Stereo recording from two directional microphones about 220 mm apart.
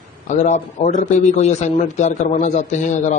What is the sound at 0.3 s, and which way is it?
A man's voice, 35° left (ahead or behind).